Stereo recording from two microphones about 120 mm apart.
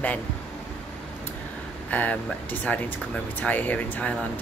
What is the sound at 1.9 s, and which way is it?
Speech, 10° left (ahead or behind).